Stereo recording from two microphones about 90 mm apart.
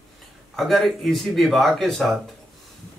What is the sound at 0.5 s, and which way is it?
Speech, centre (ahead or behind).